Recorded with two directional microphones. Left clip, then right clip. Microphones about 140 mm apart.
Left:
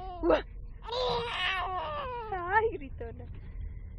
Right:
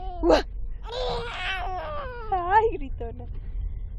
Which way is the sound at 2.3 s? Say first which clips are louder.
Right 8 dB; 20° right (ahead or behind).